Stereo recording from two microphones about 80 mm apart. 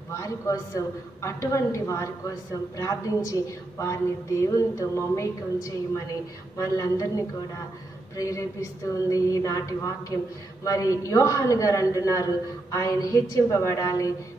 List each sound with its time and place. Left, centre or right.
0.2 s a woman's voice: left